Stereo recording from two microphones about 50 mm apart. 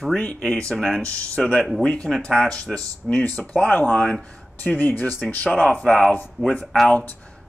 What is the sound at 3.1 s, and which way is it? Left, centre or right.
Speech, left.